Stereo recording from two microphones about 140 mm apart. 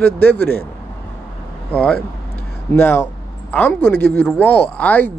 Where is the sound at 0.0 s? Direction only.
10° left (ahead or behind).